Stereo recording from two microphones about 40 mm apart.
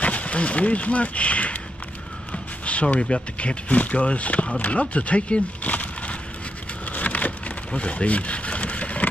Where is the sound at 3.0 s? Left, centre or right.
Left.